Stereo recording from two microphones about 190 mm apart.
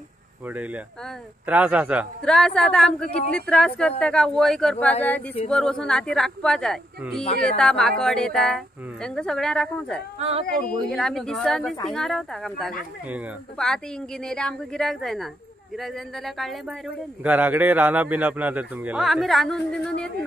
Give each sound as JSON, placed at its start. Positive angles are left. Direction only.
{"t": 0.5, "sound": "speech", "side_deg": -10}
{"t": 2.2, "sound": "speech", "side_deg": 5}
{"t": 10.1, "sound": "speech", "side_deg": -30}
{"t": 10.9, "sound": "speech", "side_deg": 5}